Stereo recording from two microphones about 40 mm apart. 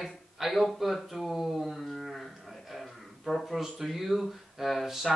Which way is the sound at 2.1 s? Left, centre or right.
Centre.